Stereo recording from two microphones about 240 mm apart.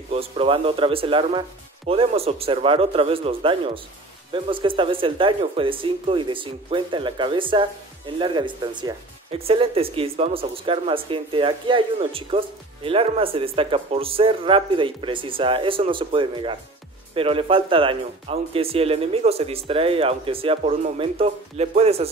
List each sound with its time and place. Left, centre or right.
0.1 s speech: right